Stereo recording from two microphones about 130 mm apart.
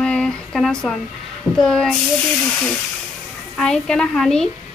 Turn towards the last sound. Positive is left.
turn(degrees=5)  # may be behind; listen again after turning